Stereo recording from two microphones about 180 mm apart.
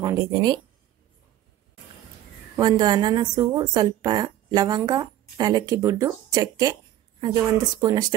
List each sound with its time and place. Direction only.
0.0 s speech: 20° right (ahead or behind)
2.5 s a woman's voice: 25° right (ahead or behind)